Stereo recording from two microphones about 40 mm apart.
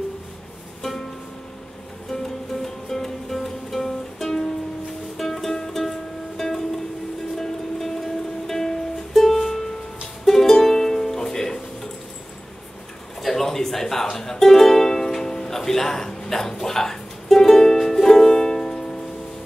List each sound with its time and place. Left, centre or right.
2.2 s music: centre
13.2 s a sound: centre
14.1 s music: centre